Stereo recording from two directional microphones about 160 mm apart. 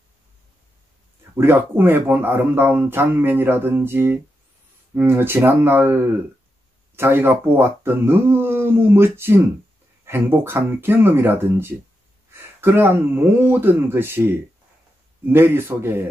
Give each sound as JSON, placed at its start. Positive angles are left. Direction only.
{"t": 1.3, "sound": "speech", "side_deg": -15}